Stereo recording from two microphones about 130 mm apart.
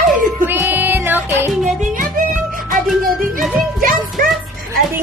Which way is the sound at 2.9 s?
Centre (ahead or behind).